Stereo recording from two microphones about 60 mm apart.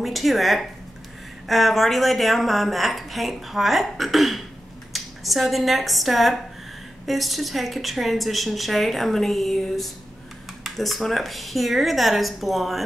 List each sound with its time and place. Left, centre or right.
0.0 s a woman's voice: centre